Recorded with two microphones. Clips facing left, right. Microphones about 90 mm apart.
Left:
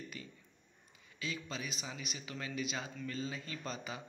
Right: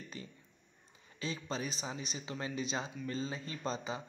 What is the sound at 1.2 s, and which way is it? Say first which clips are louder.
Speech: right 3 dB; 35° right (ahead or behind).